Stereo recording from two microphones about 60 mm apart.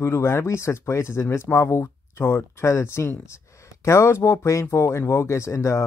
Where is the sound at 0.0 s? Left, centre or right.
Left.